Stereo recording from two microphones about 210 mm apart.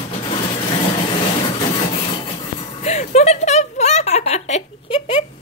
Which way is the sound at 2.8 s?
30° left (ahead or behind).